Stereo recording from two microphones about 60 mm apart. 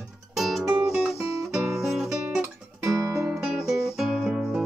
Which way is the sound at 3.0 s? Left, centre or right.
Right.